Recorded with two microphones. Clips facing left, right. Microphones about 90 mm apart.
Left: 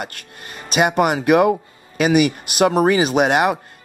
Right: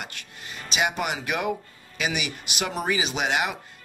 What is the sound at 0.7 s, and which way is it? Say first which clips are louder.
Speech: left 10 dB; 50° left (ahead or behind).